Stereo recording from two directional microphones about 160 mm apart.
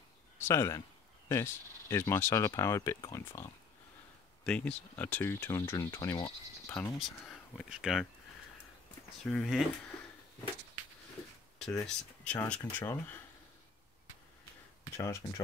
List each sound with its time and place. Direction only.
0.4 s speech: 15° left (ahead or behind)
7.0 s speech: centre (ahead or behind)
9.2 s speech: 5° left (ahead or behind)
11.8 s speech: 5° left (ahead or behind)
15.0 s speech: 20° left (ahead or behind)